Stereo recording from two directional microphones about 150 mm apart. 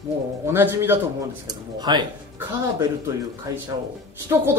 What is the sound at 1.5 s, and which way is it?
Speech, 30° right (ahead or behind).